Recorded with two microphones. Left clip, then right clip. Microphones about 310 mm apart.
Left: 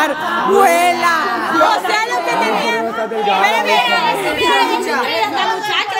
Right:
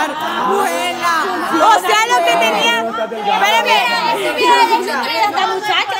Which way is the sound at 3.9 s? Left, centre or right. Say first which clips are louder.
Left 1 dB; centre.